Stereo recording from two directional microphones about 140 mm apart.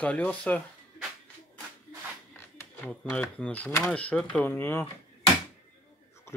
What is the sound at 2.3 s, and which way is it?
Speech, 15° left (ahead or behind).